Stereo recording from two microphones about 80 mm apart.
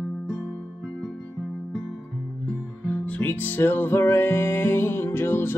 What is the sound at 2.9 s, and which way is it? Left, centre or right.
Music, left.